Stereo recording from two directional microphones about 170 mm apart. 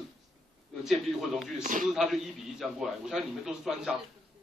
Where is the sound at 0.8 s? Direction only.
Centre (ahead or behind).